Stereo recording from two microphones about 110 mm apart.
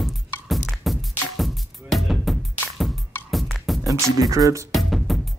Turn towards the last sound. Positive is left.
turn(degrees=0)  # may be behind; listen again after turning